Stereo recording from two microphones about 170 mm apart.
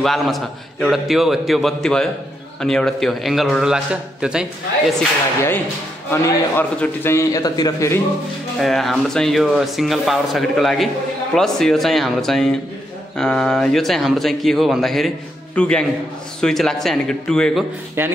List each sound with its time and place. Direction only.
0.0 s a man's voice: centre (ahead or behind)
6.5 s a man's voice: 10° left (ahead or behind)
8.5 s a man's voice: centre (ahead or behind)
18.0 s speech: 10° right (ahead or behind)